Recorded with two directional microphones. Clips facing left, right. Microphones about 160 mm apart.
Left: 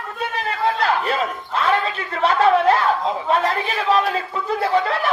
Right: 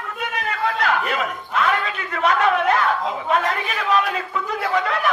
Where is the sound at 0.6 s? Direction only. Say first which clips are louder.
Left 2 dB; 30° left (ahead or behind).